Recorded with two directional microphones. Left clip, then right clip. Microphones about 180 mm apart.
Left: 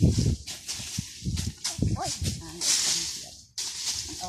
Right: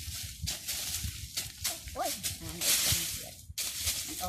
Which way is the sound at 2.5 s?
45° right (ahead or behind).